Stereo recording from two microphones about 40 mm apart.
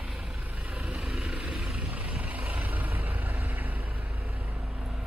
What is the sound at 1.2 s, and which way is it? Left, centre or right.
Vehicle, right.